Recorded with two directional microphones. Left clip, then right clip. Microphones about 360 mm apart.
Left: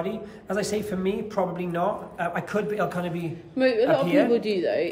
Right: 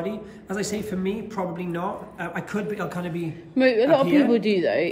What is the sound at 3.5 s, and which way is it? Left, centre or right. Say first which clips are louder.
A man's voice: right 3 dB; centre.